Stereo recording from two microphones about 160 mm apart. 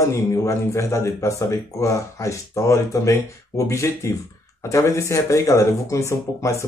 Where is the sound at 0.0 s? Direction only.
20° left (ahead or behind).